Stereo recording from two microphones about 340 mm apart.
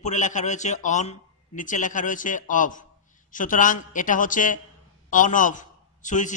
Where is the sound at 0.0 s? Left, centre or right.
Left.